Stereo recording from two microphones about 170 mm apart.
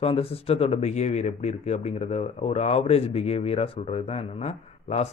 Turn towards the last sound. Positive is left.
turn(degrees=40)  # may be behind; listen again after turning